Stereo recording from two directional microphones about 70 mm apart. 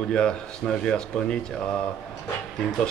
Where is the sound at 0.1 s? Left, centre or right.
Centre.